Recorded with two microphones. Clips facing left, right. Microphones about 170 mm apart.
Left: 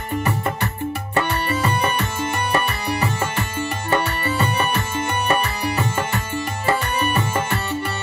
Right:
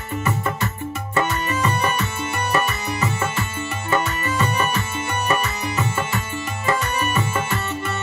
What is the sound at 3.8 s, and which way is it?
Music, 35° left (ahead or behind).